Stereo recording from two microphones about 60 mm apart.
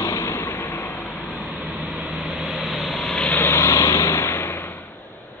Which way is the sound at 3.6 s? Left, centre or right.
Left.